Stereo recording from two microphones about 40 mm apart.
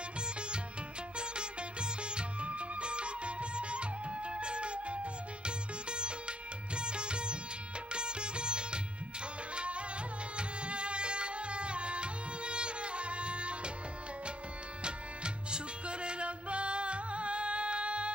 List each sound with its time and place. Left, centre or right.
1.1 s music: right
7.9 s sitar: right
9.6 s music: right
10.3 s tabla: right
14.8 s music: right